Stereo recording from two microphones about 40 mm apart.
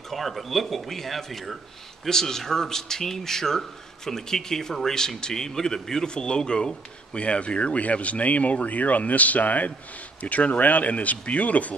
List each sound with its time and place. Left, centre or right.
0.1 s speech: centre
2.0 s a man's voice: centre; by 11.7 s left